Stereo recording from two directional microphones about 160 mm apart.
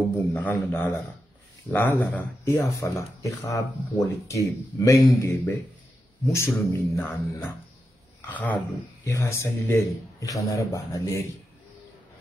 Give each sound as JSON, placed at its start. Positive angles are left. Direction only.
{"t": 0.3, "sound": "a man's voice", "side_deg": 10}